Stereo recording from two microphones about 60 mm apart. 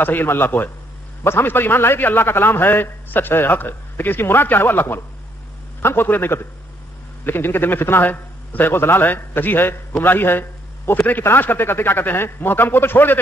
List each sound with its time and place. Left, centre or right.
0.0 s a man's voice: left
10.9 s a man's voice: left